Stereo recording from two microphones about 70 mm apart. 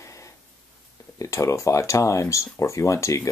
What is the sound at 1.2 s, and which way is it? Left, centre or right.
Speech, left.